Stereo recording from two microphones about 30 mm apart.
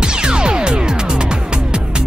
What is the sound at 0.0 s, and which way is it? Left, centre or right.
Music, right.